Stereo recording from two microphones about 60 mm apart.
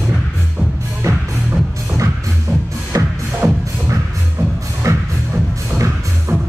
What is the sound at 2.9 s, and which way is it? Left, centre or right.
Music, right.